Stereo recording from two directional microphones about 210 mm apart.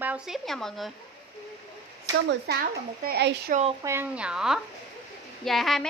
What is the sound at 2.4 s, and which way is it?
A child's voice, 45° right (ahead or behind).